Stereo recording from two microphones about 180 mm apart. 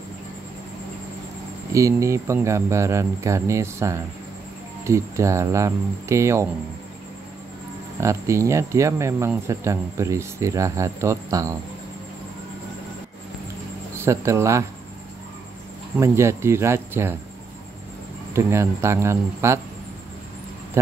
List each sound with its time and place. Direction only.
1.7 s speech: 15° right (ahead or behind)
8.0 s speech: 15° right (ahead or behind)
13.9 s speech: 15° right (ahead or behind)
16.0 s speech: 15° right (ahead or behind)
18.3 s speech: 15° right (ahead or behind)
20.8 s speech: 15° right (ahead or behind)